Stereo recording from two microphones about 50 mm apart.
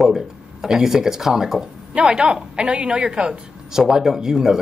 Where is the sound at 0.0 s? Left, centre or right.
Centre.